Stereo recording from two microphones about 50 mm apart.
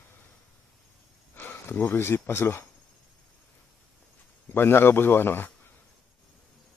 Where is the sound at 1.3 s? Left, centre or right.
Left.